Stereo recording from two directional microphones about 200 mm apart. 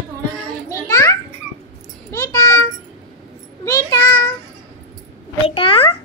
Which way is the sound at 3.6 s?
15° left (ahead or behind).